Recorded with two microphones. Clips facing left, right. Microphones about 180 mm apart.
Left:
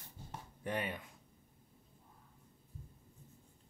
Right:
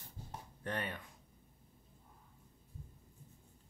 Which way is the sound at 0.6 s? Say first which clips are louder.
Left 2 dB; 10° left (ahead or behind).